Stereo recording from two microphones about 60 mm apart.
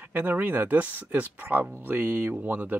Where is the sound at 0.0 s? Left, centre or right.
Right.